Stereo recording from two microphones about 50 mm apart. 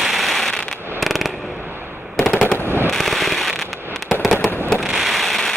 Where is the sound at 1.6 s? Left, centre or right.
Right.